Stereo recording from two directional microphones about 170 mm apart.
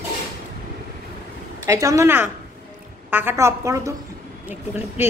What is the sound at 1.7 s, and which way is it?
A woman's voice, 20° right (ahead or behind).